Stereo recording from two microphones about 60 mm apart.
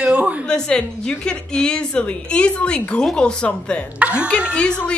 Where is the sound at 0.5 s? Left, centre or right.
Centre.